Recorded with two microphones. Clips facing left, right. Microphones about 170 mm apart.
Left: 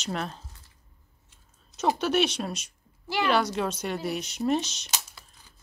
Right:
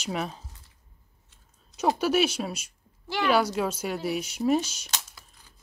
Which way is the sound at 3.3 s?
5° right (ahead or behind).